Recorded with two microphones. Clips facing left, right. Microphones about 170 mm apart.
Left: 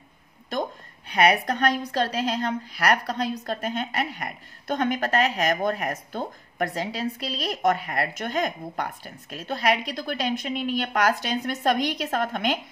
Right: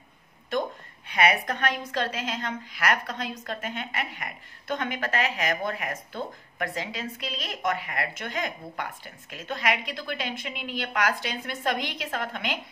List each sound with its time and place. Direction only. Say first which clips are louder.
0.5 s a woman's voice: even; 40° left (ahead or behind)